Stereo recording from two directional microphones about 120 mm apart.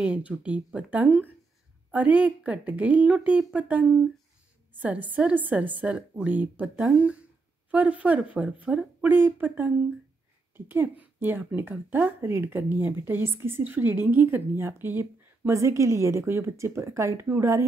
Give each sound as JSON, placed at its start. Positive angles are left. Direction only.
{"t": 0.0, "sound": "a woman's voice", "side_deg": -10}